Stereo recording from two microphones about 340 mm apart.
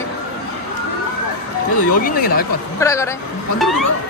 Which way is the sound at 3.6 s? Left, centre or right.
Centre.